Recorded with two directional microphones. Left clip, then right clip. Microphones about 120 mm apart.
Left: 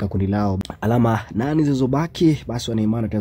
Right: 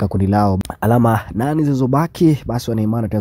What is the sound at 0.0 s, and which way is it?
Speech, 45° right (ahead or behind).